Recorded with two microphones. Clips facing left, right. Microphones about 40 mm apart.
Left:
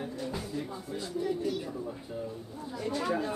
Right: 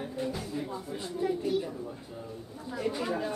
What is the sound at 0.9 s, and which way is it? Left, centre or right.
Speech, right.